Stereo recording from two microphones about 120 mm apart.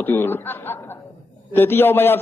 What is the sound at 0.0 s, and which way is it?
A man's voice, 15° left (ahead or behind).